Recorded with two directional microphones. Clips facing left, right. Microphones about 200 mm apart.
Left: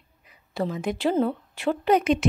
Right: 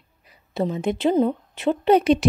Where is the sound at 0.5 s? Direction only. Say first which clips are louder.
Right 4 dB; 25° right (ahead or behind).